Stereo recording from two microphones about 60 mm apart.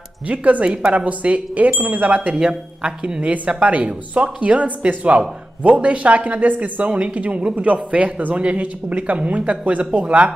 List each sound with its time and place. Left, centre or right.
0.3 s speech: right